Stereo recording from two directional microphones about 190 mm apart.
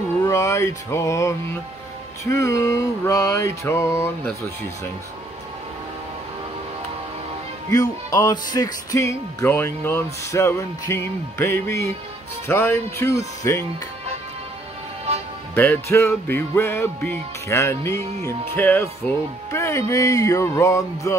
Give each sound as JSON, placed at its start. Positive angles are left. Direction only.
{"t": 0.2, "sound": "music", "side_deg": 15}
{"t": 2.2, "sound": "speech", "side_deg": 15}
{"t": 7.7, "sound": "speech", "side_deg": 15}
{"t": 15.5, "sound": "speech", "side_deg": 10}